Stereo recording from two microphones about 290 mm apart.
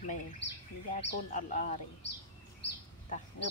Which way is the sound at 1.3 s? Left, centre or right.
Left.